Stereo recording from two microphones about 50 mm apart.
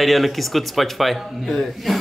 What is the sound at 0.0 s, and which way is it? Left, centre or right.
Speech, centre.